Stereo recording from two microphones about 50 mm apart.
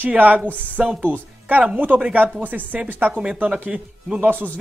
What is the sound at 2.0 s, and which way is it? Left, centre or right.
A woman's voice, right.